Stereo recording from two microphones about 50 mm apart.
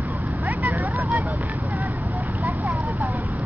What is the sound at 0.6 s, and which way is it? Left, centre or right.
Vehicle, right.